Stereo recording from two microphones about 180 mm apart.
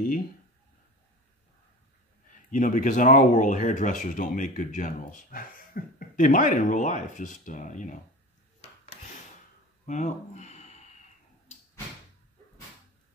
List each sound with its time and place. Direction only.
2.5 s speech: 45° left (ahead or behind)
9.8 s speech: 45° left (ahead or behind)